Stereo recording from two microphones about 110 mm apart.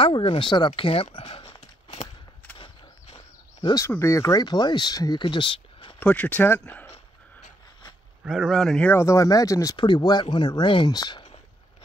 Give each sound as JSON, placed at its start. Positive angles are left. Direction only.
{"t": 0.0, "sound": "speech", "side_deg": 55}
{"t": 1.6, "sound": "a sound", "side_deg": 60}
{"t": 4.0, "sound": "speech", "side_deg": 30}
{"t": 5.9, "sound": "speech", "side_deg": 15}
{"t": 8.2, "sound": "speech", "side_deg": -5}
{"t": 8.8, "sound": "speech", "side_deg": 25}
{"t": 9.8, "sound": "speech", "side_deg": 45}